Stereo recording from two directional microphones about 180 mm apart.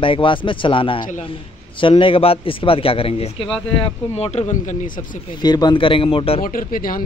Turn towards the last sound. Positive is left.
turn(degrees=50)  # may be behind; listen again after turning